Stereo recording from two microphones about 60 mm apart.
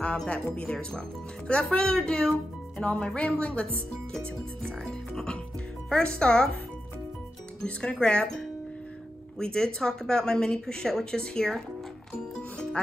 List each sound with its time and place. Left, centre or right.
0.6 s a woman's voice: centre
4.6 s a woman's voice: centre
7.6 s a woman's voice: centre
12.4 s music: centre